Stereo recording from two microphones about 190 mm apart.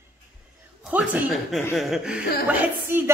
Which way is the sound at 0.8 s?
5° right (ahead or behind).